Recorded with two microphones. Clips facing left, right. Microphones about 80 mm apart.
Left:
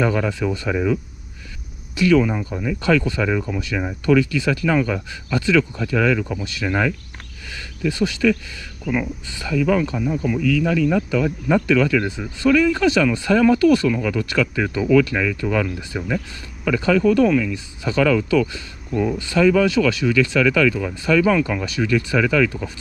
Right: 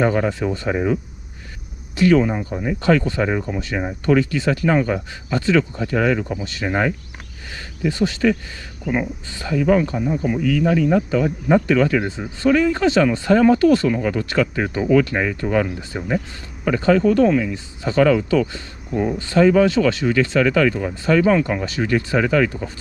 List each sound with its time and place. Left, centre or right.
0.0 s speech: right
2.0 s speech: right
16.6 s speech: right